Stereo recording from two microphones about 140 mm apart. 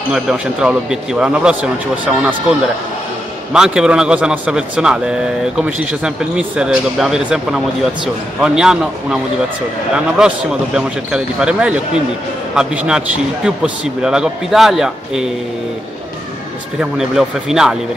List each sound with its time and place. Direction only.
0.1 s speech: 5° right (ahead or behind)
3.5 s a man's voice: 5° right (ahead or behind)
17.1 s a man's voice: 5° right (ahead or behind)